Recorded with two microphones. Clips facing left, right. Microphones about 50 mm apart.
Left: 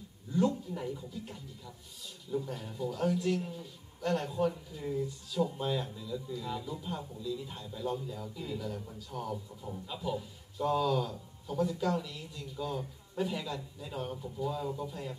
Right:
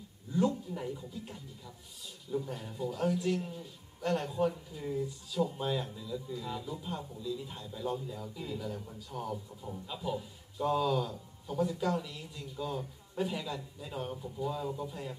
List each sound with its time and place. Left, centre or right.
0.7 s a man's voice: centre